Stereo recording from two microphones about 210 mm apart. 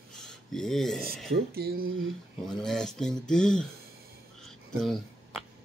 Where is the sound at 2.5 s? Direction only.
Centre (ahead or behind).